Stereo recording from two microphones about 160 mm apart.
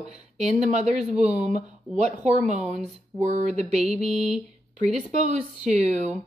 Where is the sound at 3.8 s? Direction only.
5° right (ahead or behind).